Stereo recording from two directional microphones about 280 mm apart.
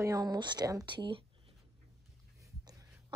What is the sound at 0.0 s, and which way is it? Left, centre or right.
Speech, centre.